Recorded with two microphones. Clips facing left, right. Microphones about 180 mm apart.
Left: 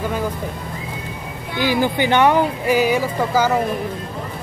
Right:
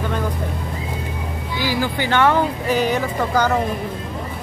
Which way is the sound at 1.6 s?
20° left (ahead or behind).